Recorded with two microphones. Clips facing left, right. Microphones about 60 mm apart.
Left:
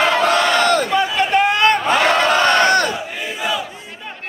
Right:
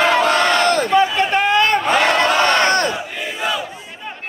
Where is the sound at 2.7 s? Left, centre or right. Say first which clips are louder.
Left 1 dB; right.